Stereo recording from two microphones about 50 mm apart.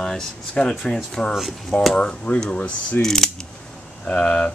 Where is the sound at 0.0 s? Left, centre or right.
Centre.